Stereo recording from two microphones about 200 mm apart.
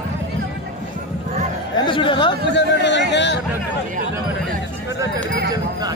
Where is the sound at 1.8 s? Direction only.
25° left (ahead or behind).